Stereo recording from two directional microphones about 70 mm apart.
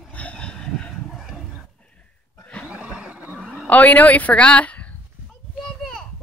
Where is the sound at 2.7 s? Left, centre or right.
Centre.